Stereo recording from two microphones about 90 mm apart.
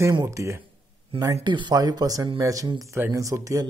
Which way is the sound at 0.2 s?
35° right (ahead or behind).